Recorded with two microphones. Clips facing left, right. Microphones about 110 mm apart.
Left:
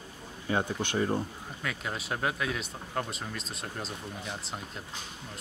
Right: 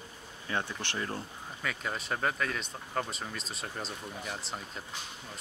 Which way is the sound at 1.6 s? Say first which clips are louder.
Even; 5° left (ahead or behind).